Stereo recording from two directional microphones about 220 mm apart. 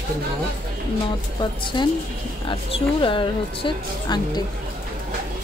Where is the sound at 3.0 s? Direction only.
25° left (ahead or behind).